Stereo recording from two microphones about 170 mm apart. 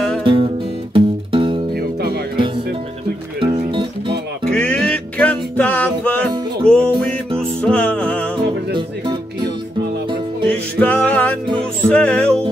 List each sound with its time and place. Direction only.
0.2 s music: 30° right (ahead or behind)
1.7 s music: 65° right (ahead or behind)
3.3 s music: 30° right (ahead or behind)
4.5 s music: 5° left (ahead or behind)
8.7 s music: 30° right (ahead or behind)
10.5 s music: 10° left (ahead or behind)